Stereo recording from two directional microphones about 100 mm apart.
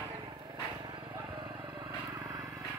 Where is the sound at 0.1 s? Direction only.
45° right (ahead or behind).